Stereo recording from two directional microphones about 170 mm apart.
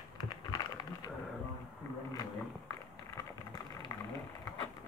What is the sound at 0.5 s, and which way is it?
Typing, 25° left (ahead or behind).